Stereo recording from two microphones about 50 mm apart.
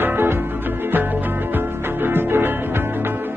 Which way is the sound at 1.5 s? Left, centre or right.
Right.